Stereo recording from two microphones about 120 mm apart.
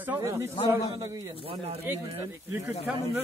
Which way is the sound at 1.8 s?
15° right (ahead or behind).